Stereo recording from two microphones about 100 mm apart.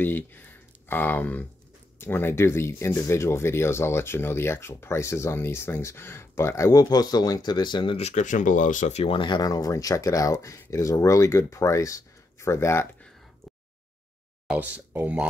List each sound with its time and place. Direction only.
0.0 s speech: 20° left (ahead or behind); by 8.0 s 50° left (ahead or behind)
8.9 s speech: 65° left (ahead or behind); by 12.8 s 25° left (ahead or behind)
14.5 s speech: 15° right (ahead or behind)